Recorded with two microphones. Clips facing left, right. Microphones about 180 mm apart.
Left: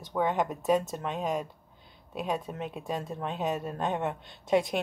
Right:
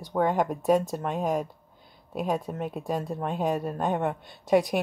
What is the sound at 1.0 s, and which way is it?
Speech, 45° right (ahead or behind).